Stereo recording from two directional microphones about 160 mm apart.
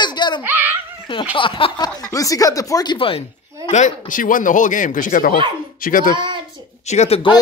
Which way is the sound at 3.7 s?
55° left (ahead or behind).